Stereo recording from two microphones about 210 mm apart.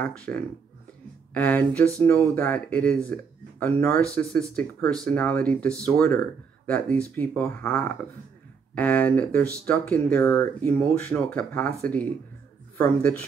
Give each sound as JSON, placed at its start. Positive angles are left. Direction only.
{"t": 0.0, "sound": "speech", "side_deg": 10}